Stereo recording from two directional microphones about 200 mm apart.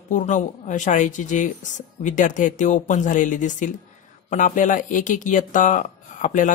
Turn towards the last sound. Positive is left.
turn(degrees=40)  # may be behind; listen again after turning